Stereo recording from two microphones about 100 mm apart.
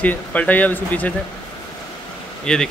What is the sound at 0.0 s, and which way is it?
A man's voice, 15° left (ahead or behind).